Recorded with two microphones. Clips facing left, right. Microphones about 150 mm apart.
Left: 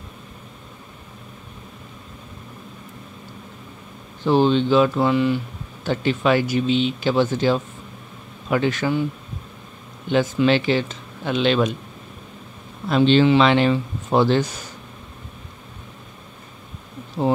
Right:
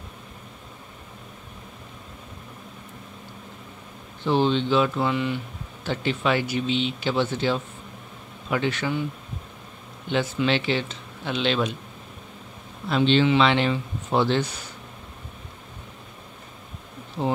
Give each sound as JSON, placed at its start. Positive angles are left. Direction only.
{"t": 4.2, "sound": "speech", "side_deg": 45}
{"t": 10.0, "sound": "speech", "side_deg": 45}
{"t": 12.8, "sound": "speech", "side_deg": 40}
{"t": 17.2, "sound": "speech", "side_deg": 40}